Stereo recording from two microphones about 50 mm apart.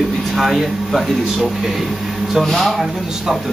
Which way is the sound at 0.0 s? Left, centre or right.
Centre.